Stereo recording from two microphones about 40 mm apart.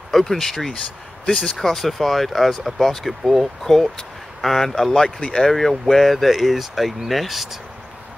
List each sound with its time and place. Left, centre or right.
0.1 s speech: centre
4.9 s speech: centre
5.5 s speech: centre